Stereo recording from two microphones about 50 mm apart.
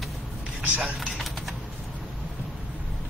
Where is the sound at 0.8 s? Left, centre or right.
Centre.